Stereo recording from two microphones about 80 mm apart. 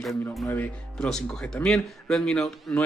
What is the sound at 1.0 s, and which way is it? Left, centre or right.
Speech, centre.